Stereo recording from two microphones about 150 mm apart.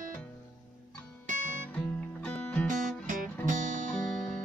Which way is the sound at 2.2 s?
5° left (ahead or behind).